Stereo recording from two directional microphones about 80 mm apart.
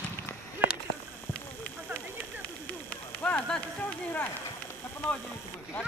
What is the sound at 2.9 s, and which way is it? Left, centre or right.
Clip-clop, centre.